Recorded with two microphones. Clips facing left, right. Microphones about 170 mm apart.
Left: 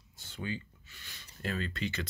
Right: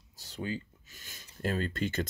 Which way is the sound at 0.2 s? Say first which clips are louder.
Right 2 dB; 40° right (ahead or behind).